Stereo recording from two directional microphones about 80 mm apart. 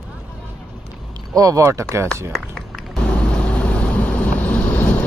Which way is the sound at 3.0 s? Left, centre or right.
Centre.